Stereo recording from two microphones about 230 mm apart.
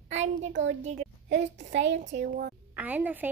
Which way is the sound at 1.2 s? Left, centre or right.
Right.